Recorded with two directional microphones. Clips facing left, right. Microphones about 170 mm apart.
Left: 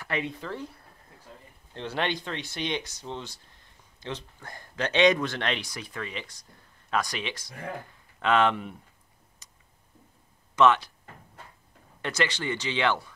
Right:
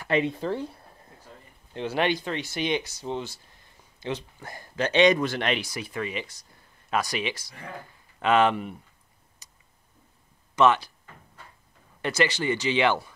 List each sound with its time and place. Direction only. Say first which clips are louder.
0.0 s speech: right 7 dB; 30° right (ahead or behind)
1.7 s speech: right 5 dB; 10° right (ahead or behind)
9.4 s a sound: right 1 dB; 5° right (ahead or behind)
10.5 s speech: even; centre (ahead or behind)
12.0 s speech: right 4 dB; 5° right (ahead or behind)